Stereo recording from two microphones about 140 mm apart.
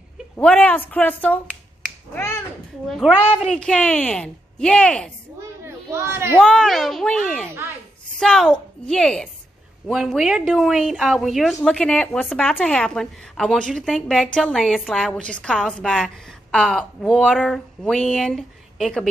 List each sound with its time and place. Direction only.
0.4 s speech: 10° left (ahead or behind)
2.1 s finger snapping: 20° left (ahead or behind)
3.3 s speech: 5° left (ahead or behind)
5.9 s speech: 20° right (ahead or behind)
6.4 s a woman's voice: 5° left (ahead or behind)